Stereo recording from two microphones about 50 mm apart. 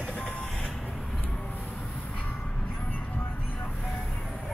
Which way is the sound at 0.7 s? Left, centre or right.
Centre.